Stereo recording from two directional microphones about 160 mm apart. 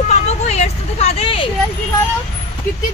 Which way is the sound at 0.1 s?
45° left (ahead or behind).